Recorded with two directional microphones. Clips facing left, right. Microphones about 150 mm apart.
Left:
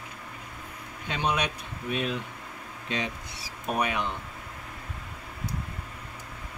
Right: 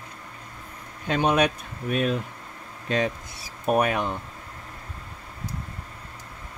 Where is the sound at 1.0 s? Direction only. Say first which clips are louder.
Right 7 dB; 50° right (ahead or behind).